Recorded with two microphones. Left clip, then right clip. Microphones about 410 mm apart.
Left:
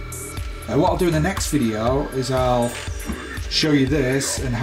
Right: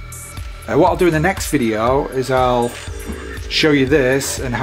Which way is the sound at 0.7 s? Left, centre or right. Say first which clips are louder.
Right 5 dB; centre.